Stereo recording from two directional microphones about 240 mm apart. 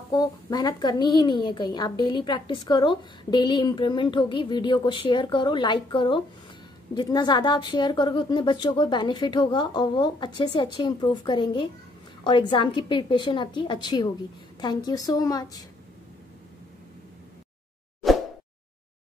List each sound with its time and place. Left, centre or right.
0.1 s a woman's voice: centre
18.0 s plop: centre